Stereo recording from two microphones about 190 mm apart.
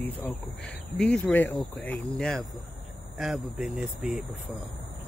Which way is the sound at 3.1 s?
Centre (ahead or behind).